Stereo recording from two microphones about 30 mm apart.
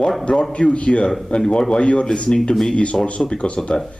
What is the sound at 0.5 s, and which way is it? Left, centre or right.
A man's voice, left.